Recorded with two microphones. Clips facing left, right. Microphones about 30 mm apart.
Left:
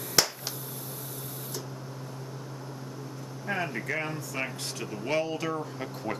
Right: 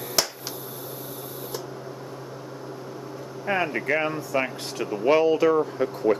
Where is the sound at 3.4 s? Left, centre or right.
Right.